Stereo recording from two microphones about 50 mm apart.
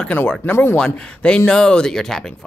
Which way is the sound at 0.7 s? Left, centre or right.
Centre.